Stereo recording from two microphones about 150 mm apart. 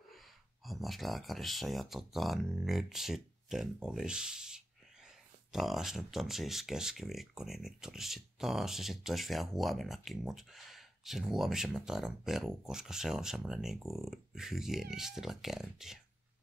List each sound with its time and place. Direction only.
0.7 s speech: centre (ahead or behind)